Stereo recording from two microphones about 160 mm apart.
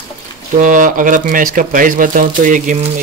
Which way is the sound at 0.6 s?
55° right (ahead or behind).